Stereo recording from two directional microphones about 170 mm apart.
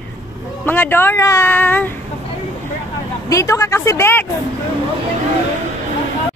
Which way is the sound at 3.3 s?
20° left (ahead or behind).